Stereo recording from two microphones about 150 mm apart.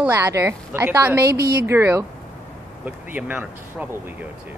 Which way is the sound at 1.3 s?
90° right.